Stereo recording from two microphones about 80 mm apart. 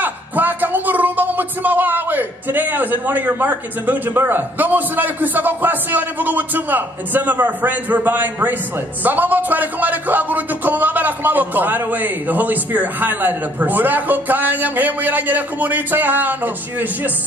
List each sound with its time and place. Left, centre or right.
0.0 s a man's voice: right